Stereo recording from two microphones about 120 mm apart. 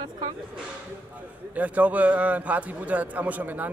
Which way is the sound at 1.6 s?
10° right (ahead or behind).